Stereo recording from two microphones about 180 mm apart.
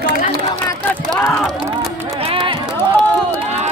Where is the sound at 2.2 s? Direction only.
30° right (ahead or behind).